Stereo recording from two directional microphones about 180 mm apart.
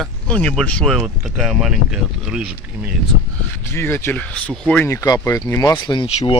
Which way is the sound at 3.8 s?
15° left (ahead or behind).